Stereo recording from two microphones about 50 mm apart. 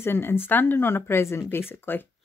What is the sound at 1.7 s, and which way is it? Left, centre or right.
Speech, left.